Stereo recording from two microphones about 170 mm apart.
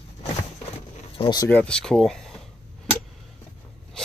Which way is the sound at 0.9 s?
30° left (ahead or behind).